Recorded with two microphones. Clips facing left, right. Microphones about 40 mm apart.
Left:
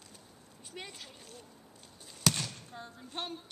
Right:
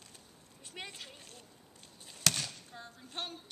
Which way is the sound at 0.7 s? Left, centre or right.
Centre.